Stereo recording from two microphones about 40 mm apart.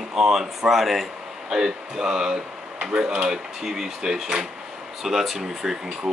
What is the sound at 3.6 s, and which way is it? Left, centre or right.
Speech, centre.